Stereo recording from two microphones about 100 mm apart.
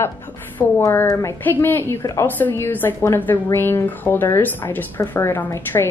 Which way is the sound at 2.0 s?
35° left (ahead or behind).